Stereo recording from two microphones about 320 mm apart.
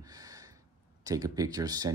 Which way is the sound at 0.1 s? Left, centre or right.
Centre.